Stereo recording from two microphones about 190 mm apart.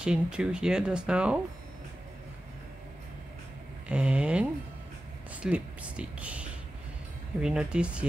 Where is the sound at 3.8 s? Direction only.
5° right (ahead or behind).